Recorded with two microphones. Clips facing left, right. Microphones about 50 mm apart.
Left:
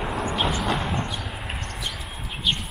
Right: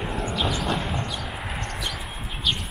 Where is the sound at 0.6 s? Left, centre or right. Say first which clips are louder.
Left 1 dB; centre.